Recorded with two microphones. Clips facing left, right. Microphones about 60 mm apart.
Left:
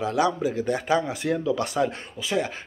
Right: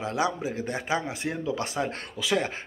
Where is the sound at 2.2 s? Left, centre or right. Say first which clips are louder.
Right 2 dB; right.